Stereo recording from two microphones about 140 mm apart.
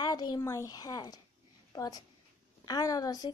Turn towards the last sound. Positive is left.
turn(degrees=25)  # may be behind; listen again after turning